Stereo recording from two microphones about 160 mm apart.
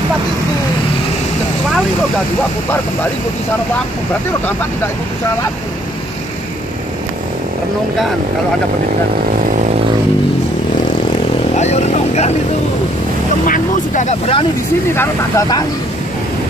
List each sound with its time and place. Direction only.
11.5 s vehicle: 45° left (ahead or behind)
13.5 s speech: 50° left (ahead or behind)
15.0 s speech: 20° left (ahead or behind)